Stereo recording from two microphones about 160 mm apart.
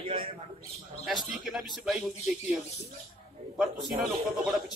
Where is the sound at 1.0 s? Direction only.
Centre (ahead or behind).